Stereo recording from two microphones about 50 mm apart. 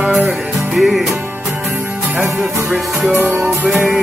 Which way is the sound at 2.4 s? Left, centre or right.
Centre.